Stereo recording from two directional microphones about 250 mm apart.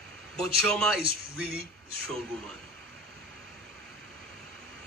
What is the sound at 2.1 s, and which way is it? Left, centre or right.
Speech, centre.